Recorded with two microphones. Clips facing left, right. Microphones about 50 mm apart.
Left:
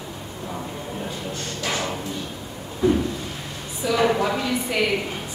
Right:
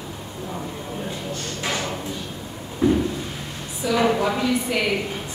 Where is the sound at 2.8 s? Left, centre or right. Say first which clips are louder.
Even; right.